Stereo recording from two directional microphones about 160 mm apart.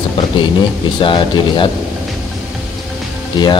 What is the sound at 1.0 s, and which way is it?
Speech, 30° left (ahead or behind).